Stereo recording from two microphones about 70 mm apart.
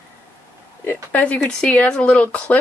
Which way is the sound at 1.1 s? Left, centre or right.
Left.